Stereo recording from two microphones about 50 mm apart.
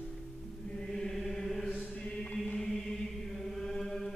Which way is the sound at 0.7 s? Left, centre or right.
Centre.